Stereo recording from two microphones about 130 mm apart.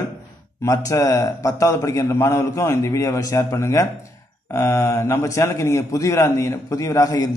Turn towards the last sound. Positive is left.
turn(degrees=25)  # may be behind; listen again after turning